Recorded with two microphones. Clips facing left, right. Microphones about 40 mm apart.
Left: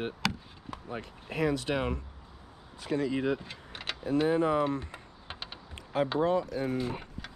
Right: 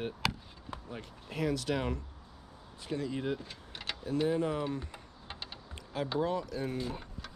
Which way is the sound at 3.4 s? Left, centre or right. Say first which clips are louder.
Left 2 dB; left.